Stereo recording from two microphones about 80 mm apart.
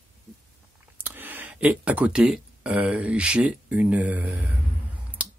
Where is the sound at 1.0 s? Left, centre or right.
Right.